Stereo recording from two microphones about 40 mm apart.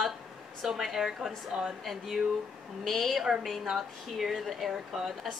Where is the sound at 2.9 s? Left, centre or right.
Centre.